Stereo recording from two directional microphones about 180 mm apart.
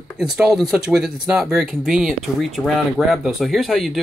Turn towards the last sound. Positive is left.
turn(degrees=0)  # may be behind; listen again after turning